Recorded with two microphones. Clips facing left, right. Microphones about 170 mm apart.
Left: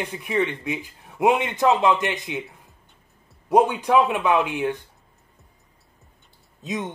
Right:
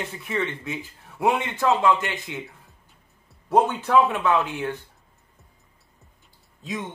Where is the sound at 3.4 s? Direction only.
15° left (ahead or behind).